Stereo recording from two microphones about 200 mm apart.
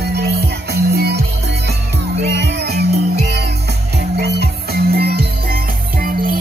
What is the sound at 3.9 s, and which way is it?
Music, 55° right (ahead or behind).